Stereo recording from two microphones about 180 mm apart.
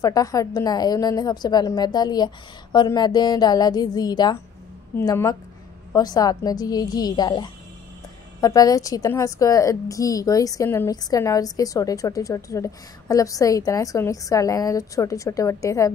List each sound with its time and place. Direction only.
0.0 s a woman's voice: 20° left (ahead or behind)